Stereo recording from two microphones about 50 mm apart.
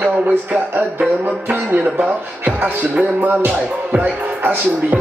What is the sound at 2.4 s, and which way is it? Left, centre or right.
Speech, right.